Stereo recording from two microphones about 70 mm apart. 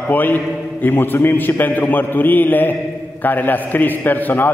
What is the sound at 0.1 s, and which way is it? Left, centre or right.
A man's voice, left.